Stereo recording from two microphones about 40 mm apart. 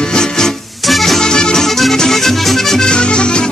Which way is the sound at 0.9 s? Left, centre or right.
Centre.